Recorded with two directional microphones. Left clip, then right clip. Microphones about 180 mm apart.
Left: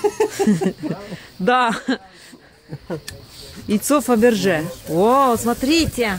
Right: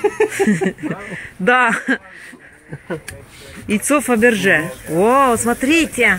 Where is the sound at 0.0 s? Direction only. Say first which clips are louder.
Right 2 dB; 55° left (ahead or behind).